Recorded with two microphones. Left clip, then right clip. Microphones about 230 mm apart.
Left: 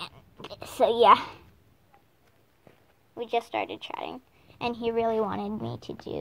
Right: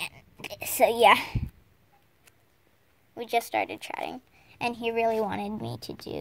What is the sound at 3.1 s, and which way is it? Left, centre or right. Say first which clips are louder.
A woman's voice: right 2 dB; right.